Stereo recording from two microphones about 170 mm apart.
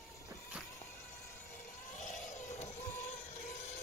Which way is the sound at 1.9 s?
45° left (ahead or behind).